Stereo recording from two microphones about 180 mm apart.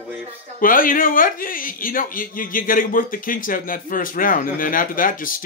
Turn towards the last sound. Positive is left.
turn(degrees=50)  # may be behind; listen again after turning